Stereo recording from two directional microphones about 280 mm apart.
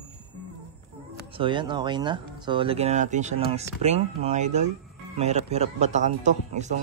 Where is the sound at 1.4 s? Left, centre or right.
Centre.